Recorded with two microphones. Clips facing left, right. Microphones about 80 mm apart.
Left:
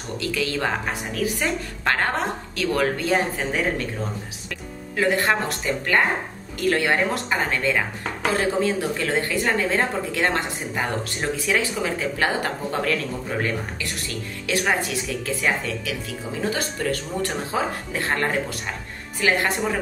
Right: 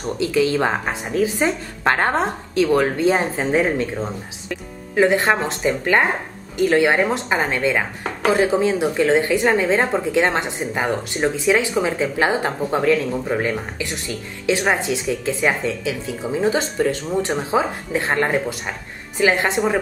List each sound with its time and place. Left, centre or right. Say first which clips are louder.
0.2 s a woman's voice: right 7 dB; right